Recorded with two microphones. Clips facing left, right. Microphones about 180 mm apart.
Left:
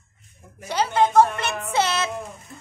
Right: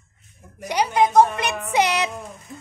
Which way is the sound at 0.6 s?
15° right (ahead or behind).